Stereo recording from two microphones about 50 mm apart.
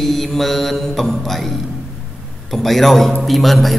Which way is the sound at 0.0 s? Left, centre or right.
Centre.